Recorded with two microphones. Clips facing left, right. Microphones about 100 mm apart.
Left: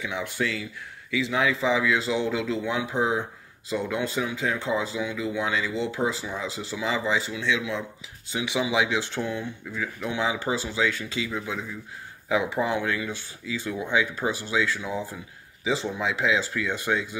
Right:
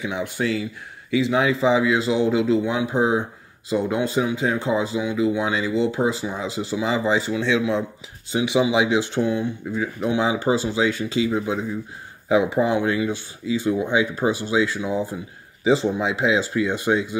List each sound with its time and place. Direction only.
0.0 s speech: 20° right (ahead or behind)
6.9 s speech: 30° right (ahead or behind); by 17.2 s 15° right (ahead or behind)